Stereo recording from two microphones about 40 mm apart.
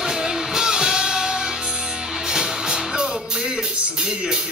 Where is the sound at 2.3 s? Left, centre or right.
Centre.